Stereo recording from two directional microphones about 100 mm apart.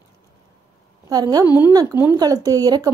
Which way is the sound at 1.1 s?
40° right (ahead or behind).